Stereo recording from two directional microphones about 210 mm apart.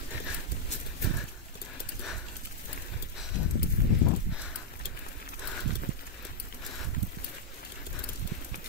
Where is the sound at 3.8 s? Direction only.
45° left (ahead or behind).